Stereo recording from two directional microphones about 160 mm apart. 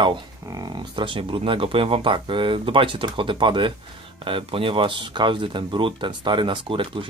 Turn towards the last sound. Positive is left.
turn(degrees=-30)  # may be behind; listen again after turning